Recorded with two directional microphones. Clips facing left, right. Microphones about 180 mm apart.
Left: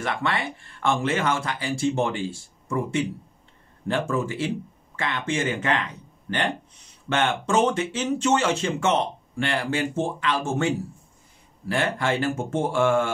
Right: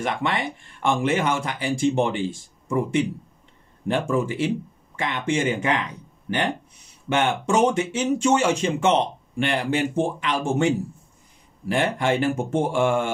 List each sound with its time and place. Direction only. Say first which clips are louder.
0.0 s speech: right 2 dB; 15° right (ahead or behind)